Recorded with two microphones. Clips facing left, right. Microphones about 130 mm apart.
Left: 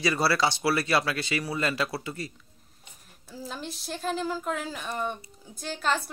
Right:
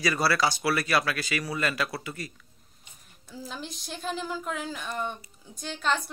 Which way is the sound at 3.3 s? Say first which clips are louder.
Left 1 dB; centre (ahead or behind).